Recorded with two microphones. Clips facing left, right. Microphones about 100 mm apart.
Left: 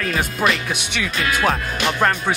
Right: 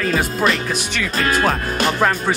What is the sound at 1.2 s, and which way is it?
Speech, 40° right (ahead or behind).